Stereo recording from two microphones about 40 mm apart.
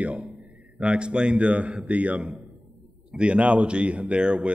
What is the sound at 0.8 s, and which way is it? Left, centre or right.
A man's voice, right.